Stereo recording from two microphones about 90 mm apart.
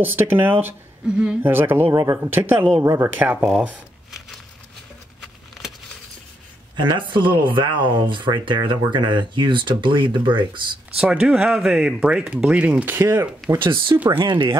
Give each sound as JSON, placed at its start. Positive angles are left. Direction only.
{"t": 0.0, "sound": "speech", "side_deg": -20}
{"t": 1.0, "sound": "speech", "side_deg": -10}
{"t": 1.4, "sound": "speech", "side_deg": -20}
{"t": 1.9, "sound": "speech", "side_deg": -50}
{"t": 2.2, "sound": "speech", "side_deg": -20}
{"t": 3.2, "sound": "speech", "side_deg": -20}
{"t": 6.8, "sound": "speech", "side_deg": -60}
{"t": 11.0, "sound": "speech", "side_deg": -10}
{"t": 13.6, "sound": "speech", "side_deg": -65}